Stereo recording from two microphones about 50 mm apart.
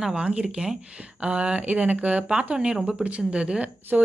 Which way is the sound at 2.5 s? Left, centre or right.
Centre.